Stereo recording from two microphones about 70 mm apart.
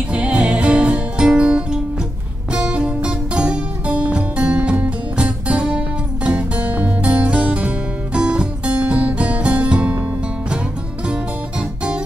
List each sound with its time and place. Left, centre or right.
0.1 s music: centre